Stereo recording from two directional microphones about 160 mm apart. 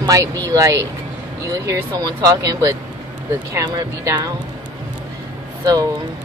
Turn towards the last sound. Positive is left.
turn(degrees=-25)  # may be behind; listen again after turning